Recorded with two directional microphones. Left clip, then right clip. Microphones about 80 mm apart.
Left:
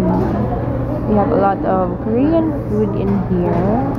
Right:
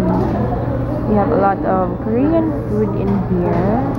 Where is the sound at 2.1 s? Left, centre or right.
Centre.